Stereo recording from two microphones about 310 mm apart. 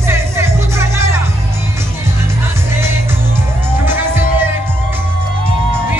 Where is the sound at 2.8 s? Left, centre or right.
Centre.